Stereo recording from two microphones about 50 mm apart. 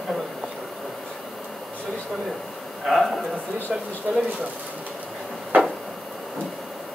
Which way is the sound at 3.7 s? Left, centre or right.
Centre.